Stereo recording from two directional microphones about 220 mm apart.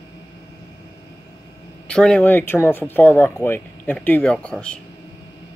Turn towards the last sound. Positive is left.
turn(degrees=5)  # may be behind; listen again after turning